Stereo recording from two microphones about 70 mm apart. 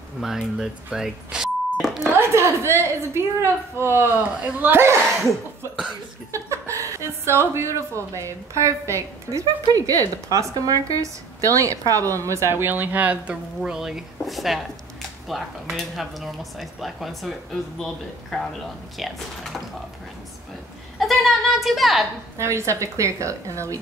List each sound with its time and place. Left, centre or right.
0.2 s speech: centre
0.9 s a sound: centre
2.1 s a woman's voice: right
6.3 s a woman's voice: right
9.7 s a woman's voice: right
13.6 s a man's voice: centre
21.0 s a sound: centre
22.4 s a woman's voice: right